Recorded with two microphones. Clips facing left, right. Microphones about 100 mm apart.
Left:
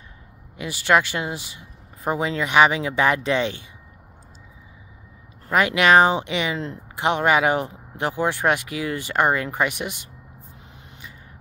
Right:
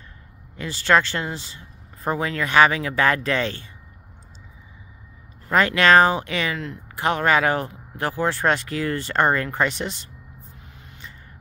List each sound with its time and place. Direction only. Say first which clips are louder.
0.6 s speech: even; 15° left (ahead or behind)
5.5 s speech: even; 15° left (ahead or behind)